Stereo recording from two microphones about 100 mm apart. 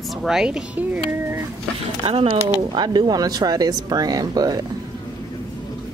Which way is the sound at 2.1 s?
75° right (ahead or behind).